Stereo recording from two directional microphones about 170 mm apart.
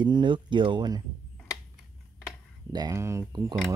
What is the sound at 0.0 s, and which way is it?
Speech, 25° right (ahead or behind).